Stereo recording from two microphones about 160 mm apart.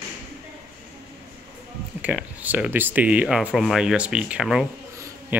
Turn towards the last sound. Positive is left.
turn(degrees=-20)  # may be behind; listen again after turning